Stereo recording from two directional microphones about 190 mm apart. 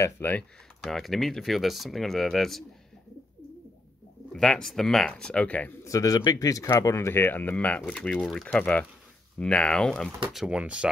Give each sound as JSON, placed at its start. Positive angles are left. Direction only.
{"t": 0.0, "sound": "speech", "side_deg": 10}
{"t": 4.3, "sound": "speech", "side_deg": 5}